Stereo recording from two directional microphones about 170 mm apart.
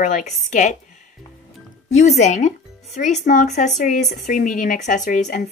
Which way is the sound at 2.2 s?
45° left (ahead or behind).